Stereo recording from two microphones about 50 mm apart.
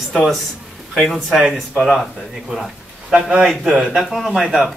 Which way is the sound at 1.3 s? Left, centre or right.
Centre.